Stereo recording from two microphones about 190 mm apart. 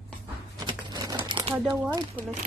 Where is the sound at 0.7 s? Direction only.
20° right (ahead or behind).